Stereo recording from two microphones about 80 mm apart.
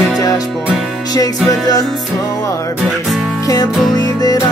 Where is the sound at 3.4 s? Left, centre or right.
Left.